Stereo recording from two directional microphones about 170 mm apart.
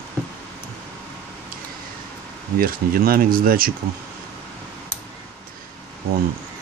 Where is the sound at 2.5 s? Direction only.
60° right (ahead or behind).